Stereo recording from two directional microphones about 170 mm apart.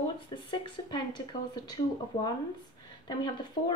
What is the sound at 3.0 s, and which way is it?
Speech, 25° left (ahead or behind).